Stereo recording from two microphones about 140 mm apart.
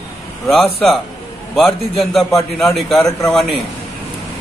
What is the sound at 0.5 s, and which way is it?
A man's voice, centre (ahead or behind).